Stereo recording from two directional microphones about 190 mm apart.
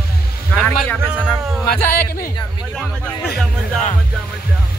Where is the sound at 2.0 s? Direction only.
50° left (ahead or behind).